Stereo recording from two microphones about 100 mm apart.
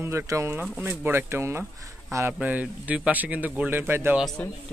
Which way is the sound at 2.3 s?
15° right (ahead or behind).